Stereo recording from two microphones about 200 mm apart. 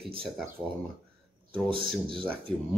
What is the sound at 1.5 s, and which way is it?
Speech, 25° right (ahead or behind).